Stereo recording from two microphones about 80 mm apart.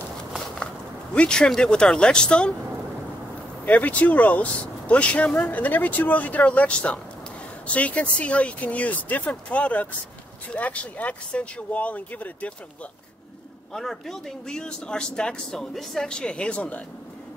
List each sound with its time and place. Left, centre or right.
1.1 s speech: centre
3.6 s speech: centre
13.7 s speech: centre